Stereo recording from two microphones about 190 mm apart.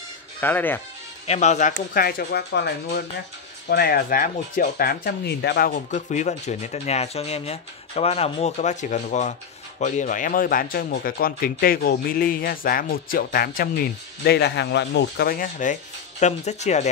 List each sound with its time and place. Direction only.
0.4 s speech: 10° left (ahead or behind)
1.2 s speech: 35° left (ahead or behind)
14.2 s speech: 60° left (ahead or behind); by 16.9 s 35° left (ahead or behind)